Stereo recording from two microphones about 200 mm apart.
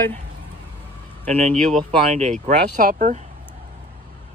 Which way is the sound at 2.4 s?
40° right (ahead or behind).